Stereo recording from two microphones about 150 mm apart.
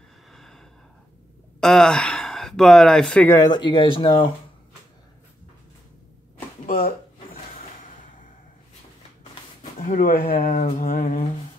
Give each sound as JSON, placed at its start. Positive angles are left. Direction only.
{"t": 0.3, "sound": "gasp", "side_deg": 0}
{"t": 1.6, "sound": "speech", "side_deg": 5}
{"t": 3.3, "sound": "speech", "side_deg": 30}
{"t": 6.6, "sound": "a sound", "side_deg": 60}
{"t": 9.6, "sound": "speech", "side_deg": 60}